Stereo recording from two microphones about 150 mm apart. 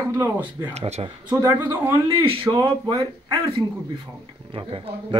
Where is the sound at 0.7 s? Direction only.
45° right (ahead or behind).